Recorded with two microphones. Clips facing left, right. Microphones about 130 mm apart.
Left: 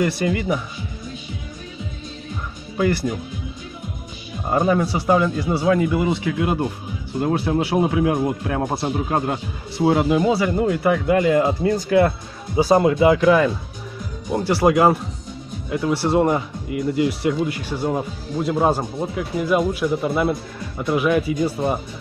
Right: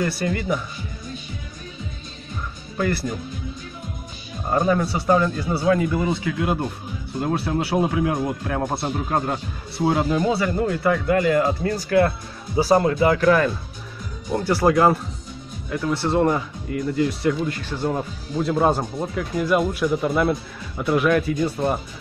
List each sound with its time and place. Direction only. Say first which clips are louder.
0.0 s speech: left 3 dB; 20° left (ahead or behind)
4.6 s speech: left 2 dB; 5° left (ahead or behind)
14.3 s speech: left 1 dB; 25° left (ahead or behind)
14.6 s speech: left 2 dB; 15° left (ahead or behind)
15.9 s speech: left 2 dB; 30° left (ahead or behind)
16.2 s speech: left 1 dB; 15° left (ahead or behind)